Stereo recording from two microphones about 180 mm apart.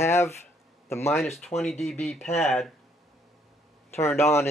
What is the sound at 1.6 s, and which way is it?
Speech, centre (ahead or behind).